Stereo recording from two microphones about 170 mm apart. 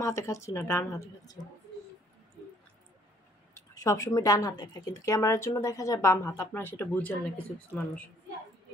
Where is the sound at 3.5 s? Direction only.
20° left (ahead or behind).